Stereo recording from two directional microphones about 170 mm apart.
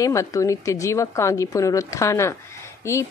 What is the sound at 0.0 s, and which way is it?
A woman's voice, 20° left (ahead or behind).